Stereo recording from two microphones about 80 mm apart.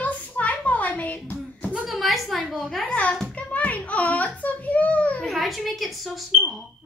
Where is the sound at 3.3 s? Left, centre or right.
Centre.